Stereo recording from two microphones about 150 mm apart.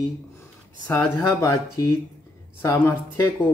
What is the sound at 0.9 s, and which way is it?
Speech, 10° left (ahead or behind).